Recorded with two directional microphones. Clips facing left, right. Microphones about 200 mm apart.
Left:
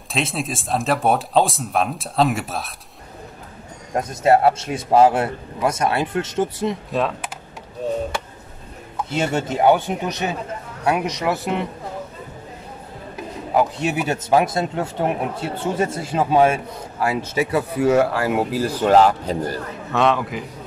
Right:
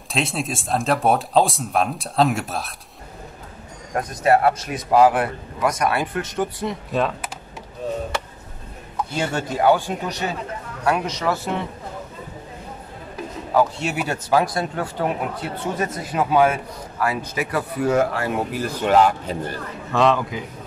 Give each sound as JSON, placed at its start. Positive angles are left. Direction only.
{"t": 0.1, "sound": "speech", "side_deg": 0}
{"t": 3.9, "sound": "speech", "side_deg": 25}
{"t": 6.9, "sound": "speech", "side_deg": 0}
{"t": 9.1, "sound": "speech", "side_deg": 25}
{"t": 13.5, "sound": "speech", "side_deg": 20}
{"t": 19.9, "sound": "speech", "side_deg": 0}